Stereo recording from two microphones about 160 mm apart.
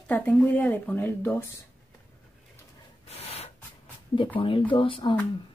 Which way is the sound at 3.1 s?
40° left (ahead or behind).